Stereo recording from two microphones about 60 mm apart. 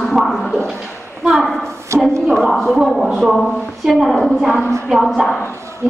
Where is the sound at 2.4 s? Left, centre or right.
Centre.